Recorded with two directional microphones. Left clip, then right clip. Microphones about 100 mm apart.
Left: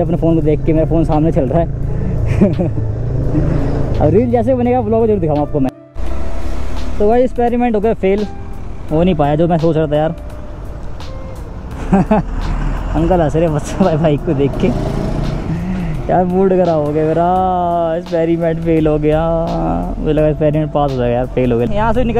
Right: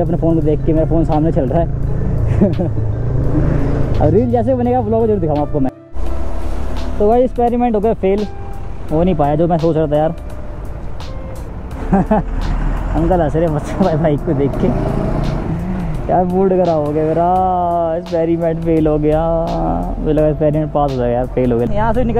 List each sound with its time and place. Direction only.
0.0 s speech: 20° left (ahead or behind)
2.2 s vehicle: 25° left (ahead or behind)
3.3 s vehicle: 10° left (ahead or behind)
4.0 s speech: 30° left (ahead or behind)
7.0 s speech: 25° left (ahead or behind)
11.8 s speech: 25° left (ahead or behind)
12.5 s vehicle: 20° left (ahead or behind)
13.9 s speech: 20° left (ahead or behind)
14.6 s vehicle: 20° left (ahead or behind)
15.3 s music: 20° left (ahead or behind)
16.3 s speech: 30° left (ahead or behind)
16.6 s speech: centre (ahead or behind)
16.9 s speech: 25° left (ahead or behind)